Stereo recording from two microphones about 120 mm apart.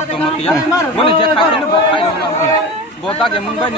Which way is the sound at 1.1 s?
45° left (ahead or behind).